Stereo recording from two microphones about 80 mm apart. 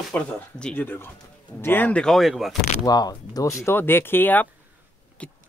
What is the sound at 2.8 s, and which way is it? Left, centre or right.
Speech, left.